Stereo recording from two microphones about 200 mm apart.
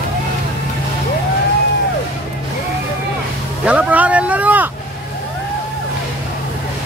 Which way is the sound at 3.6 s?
5° right (ahead or behind).